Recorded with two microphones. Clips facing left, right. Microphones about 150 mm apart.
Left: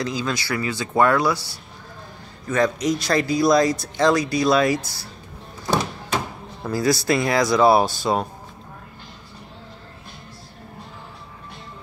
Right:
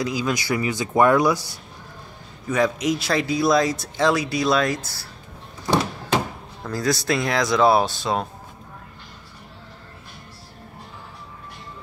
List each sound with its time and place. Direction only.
0.0 s speech: 10° right (ahead or behind)
2.5 s speech: 5° right (ahead or behind)
6.6 s speech: 5° left (ahead or behind)